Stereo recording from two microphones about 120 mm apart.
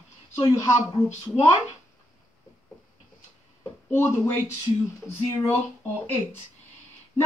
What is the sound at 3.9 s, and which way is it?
Speech, 20° left (ahead or behind).